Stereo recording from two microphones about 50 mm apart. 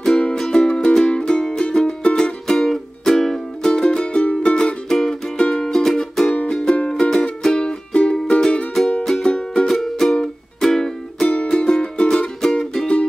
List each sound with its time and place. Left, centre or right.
0.0 s music: centre
4.8 s music: centre
6.3 s music: centre
9.8 s music: centre
12.4 s music: centre